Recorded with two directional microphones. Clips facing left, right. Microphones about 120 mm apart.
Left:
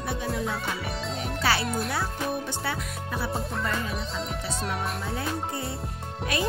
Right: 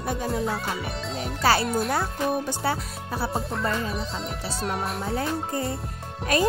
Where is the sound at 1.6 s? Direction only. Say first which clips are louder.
Right 4 dB; centre (ahead or behind).